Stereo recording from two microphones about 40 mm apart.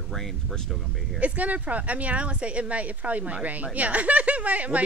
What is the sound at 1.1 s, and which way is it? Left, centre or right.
Speech, right.